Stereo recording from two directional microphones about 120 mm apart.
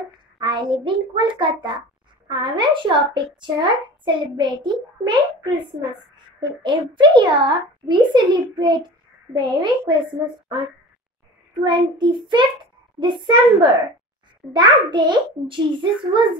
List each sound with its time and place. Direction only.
0.4 s a child's voice: 40° right (ahead or behind)
11.6 s a child's voice: 40° right (ahead or behind)